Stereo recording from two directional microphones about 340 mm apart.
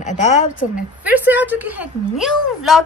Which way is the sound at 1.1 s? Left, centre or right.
Centre.